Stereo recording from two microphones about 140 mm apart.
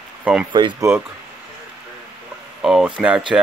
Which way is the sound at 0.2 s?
10° right (ahead or behind).